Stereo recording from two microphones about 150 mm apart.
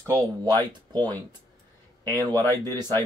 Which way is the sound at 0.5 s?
30° right (ahead or behind).